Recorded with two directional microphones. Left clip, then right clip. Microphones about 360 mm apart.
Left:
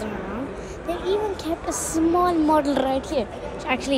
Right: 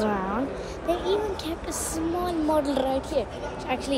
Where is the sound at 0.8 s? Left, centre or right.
Centre.